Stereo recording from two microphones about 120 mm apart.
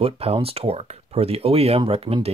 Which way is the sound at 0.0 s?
55° right (ahead or behind).